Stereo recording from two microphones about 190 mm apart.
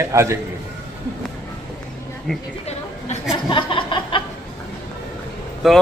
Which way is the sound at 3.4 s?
25° left (ahead or behind).